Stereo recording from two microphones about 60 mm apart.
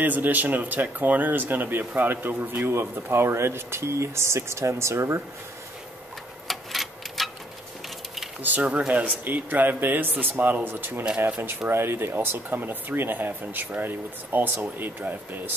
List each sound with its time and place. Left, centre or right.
0.0 s speech: right
6.4 s tick-tock: centre
8.4 s speech: right
11.7 s speech: right